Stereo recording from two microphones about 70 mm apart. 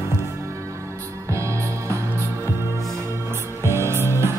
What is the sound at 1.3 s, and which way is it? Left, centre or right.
Music, right.